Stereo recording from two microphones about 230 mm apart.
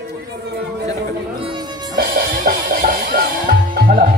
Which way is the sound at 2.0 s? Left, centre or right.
Right.